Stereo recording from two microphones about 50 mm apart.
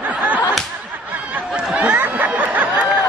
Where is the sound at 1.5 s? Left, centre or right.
Centre.